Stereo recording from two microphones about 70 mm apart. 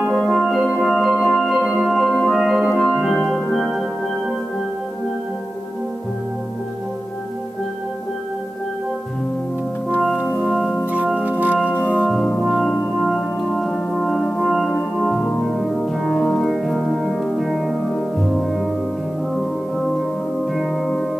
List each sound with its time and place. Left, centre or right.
0.3 s music: centre
10.3 s music: centre
11.1 s music: right
13.0 s music: centre
20.5 s music: centre